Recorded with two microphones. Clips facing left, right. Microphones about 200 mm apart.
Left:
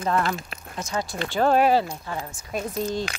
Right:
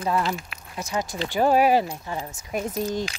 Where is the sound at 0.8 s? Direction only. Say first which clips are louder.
Right 1 dB; 15° right (ahead or behind).